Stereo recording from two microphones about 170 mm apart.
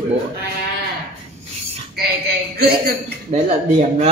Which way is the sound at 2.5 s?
70° right (ahead or behind).